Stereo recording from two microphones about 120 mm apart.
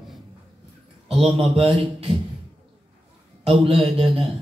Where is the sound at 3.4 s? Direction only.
55° right (ahead or behind).